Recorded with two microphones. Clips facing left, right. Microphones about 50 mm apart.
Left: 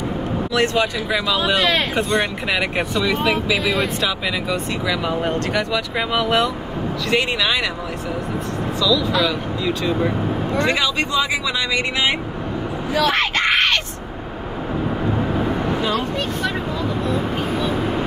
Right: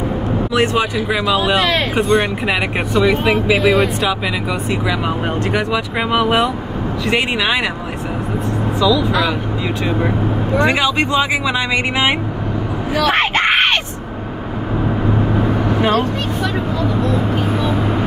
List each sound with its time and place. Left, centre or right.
0.5 s speech: centre
2.8 s speech: centre
3.5 s speech: centre; by 7.7 s right
8.7 s speech: right
10.6 s speech: right
12.9 s a sound: right
15.8 s speech: right